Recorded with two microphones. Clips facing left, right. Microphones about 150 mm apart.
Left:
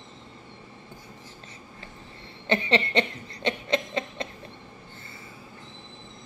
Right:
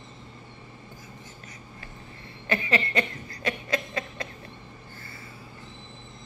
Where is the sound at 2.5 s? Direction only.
30° left (ahead or behind).